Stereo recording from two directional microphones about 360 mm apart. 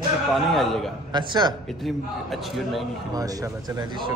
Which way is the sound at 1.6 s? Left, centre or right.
Centre.